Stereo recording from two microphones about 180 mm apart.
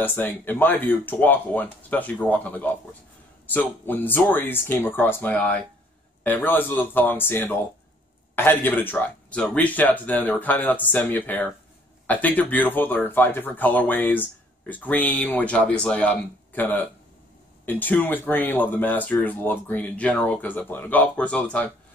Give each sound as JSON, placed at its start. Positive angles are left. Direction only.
{"t": 0.0, "sound": "speech", "side_deg": 10}